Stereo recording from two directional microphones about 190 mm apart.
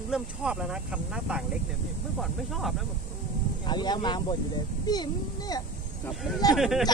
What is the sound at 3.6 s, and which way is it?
Speech, 20° left (ahead or behind).